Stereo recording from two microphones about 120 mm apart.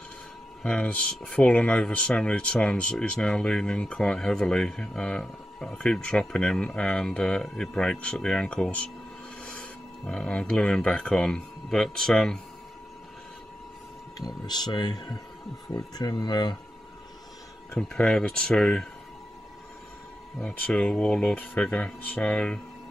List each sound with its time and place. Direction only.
0.6 s speech: 10° left (ahead or behind)
14.2 s speech: 35° left (ahead or behind)
17.7 s speech: 5° left (ahead or behind)
20.3 s speech: 10° left (ahead or behind)